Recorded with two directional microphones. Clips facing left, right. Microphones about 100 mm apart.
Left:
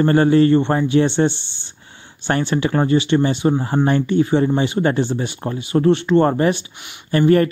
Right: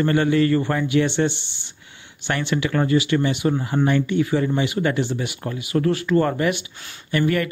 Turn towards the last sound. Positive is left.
turn(degrees=35)  # may be behind; listen again after turning